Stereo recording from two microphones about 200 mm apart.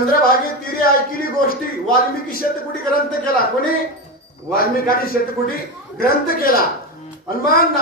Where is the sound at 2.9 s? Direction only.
45° left (ahead or behind).